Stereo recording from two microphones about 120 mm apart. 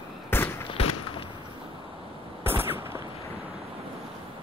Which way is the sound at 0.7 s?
45° left (ahead or behind).